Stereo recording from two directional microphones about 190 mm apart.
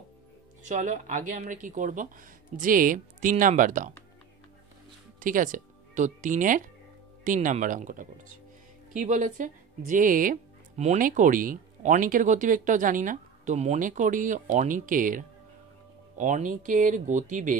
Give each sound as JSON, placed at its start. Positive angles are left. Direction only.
{"t": 0.7, "sound": "speech", "side_deg": -40}
{"t": 5.2, "sound": "speech", "side_deg": -45}